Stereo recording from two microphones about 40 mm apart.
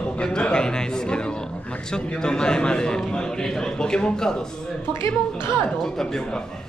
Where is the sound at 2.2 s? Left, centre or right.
Centre.